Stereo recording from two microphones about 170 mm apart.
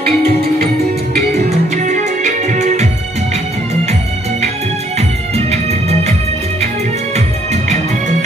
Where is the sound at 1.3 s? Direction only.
40° right (ahead or behind).